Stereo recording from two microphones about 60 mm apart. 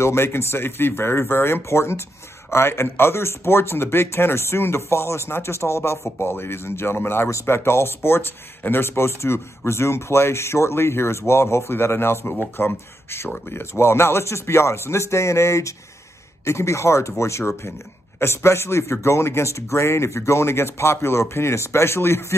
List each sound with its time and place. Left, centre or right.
0.0 s speech: left
7.2 s speech: left